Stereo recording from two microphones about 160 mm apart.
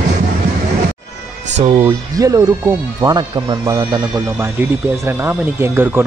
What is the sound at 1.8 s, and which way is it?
Speech, 20° right (ahead or behind).